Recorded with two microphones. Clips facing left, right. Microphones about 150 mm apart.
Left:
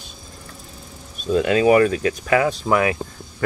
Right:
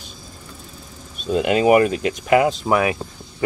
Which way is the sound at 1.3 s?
15° right (ahead or behind).